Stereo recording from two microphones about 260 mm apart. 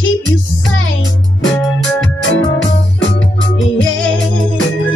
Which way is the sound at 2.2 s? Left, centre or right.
Left.